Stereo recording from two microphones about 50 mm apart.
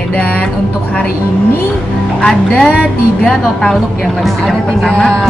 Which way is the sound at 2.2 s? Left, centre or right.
Centre.